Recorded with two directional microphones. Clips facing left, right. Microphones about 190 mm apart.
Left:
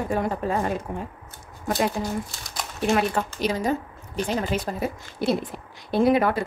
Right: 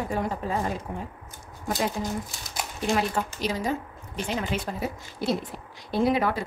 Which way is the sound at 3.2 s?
70° left (ahead or behind).